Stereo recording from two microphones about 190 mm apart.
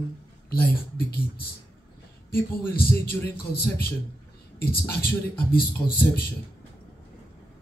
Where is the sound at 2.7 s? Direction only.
55° left (ahead or behind).